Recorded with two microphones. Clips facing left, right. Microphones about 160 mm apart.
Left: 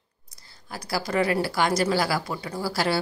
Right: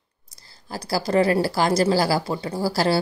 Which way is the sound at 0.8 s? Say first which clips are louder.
Right 5 dB; 35° right (ahead or behind).